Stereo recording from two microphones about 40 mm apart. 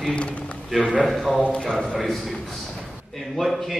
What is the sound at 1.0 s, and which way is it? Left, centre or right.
Speech, centre.